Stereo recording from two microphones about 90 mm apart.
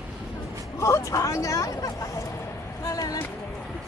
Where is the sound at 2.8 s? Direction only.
40° left (ahead or behind).